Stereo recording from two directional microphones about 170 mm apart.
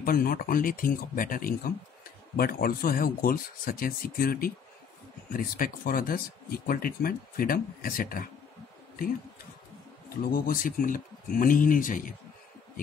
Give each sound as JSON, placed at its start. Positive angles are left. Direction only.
{"t": 0.0, "sound": "speech", "side_deg": 60}
{"t": 10.0, "sound": "speech", "side_deg": 60}